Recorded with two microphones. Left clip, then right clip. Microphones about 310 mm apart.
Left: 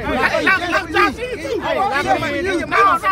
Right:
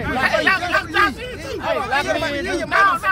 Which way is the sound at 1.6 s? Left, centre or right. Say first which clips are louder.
Left 1 dB; right.